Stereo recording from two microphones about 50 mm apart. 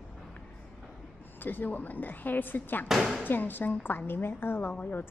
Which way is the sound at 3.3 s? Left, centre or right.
Left.